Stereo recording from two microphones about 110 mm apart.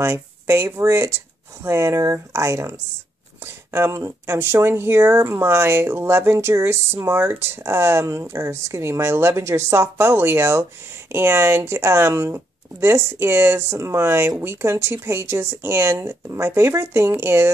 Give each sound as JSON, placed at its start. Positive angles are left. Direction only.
{"t": 0.0, "sound": "speech", "side_deg": -25}
{"t": 3.7, "sound": "speech", "side_deg": -25}